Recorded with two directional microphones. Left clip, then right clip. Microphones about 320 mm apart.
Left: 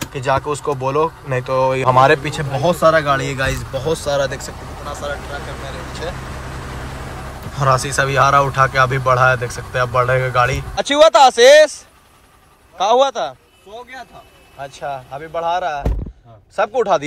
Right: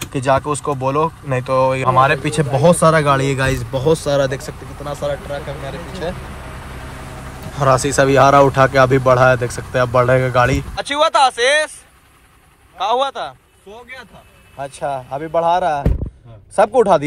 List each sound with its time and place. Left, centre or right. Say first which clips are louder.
0.1 s speech: right 2 dB; centre
2.5 s a man's voice: right 1 dB; centre
7.5 s speech: right 2 dB; centre
10.7 s speech: left 5 dB; centre
12.7 s speech: left 4 dB; centre
14.6 s speech: right 3 dB; centre